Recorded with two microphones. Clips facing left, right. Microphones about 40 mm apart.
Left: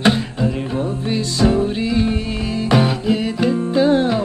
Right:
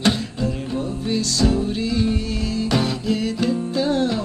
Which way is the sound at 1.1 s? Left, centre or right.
Left.